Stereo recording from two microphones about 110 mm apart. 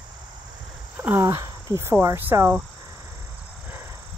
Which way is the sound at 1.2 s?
30° right (ahead or behind).